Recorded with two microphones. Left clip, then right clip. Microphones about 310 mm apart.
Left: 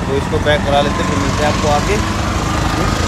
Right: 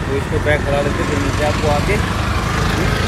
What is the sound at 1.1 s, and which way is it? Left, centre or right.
Speech, left.